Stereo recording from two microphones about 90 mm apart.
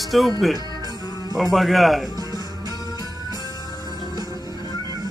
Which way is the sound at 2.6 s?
45° right (ahead or behind).